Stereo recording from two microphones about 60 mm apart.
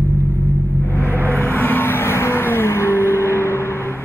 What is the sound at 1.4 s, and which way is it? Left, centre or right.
Vehicle, left.